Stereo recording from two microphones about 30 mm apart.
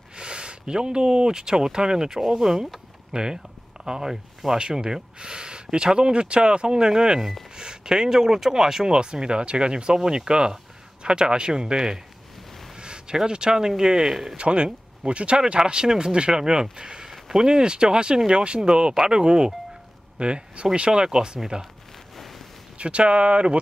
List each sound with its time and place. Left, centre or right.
0.1 s speech: right
2.0 s speech: centre
4.1 s speech: centre
4.6 s speech: right
8.9 s speech: right
14.3 s speech: right
20.9 s speech: right
22.8 s speech: right